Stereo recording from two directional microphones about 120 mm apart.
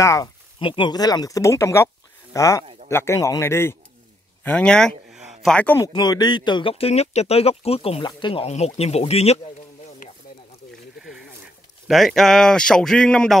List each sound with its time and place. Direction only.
0.0 s a man's voice: 25° left (ahead or behind)
0.6 s a man's voice: 45° left (ahead or behind); by 5.2 s 5° left (ahead or behind)
5.2 s a sound: centre (ahead or behind)
5.8 s speech: 35° left (ahead or behind); by 8.0 s 55° left (ahead or behind)
8.0 s speech: 40° left (ahead or behind)
8.5 s speech: 60° left (ahead or behind)
10.7 s a sound: 5° right (ahead or behind)
11.9 s speech: centre (ahead or behind)